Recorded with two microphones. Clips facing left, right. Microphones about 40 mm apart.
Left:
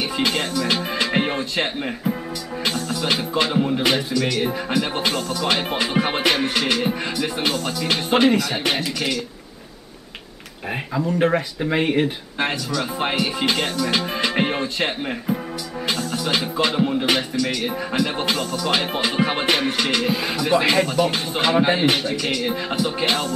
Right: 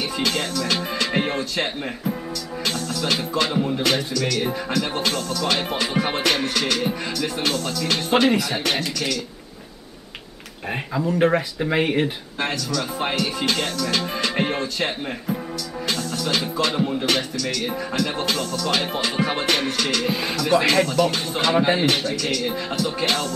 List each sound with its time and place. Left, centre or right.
0.2 s music: centre
8.3 s speech: centre
8.6 s music: centre
10.7 s speech: centre
12.4 s music: centre
20.1 s speech: centre
20.3 s music: centre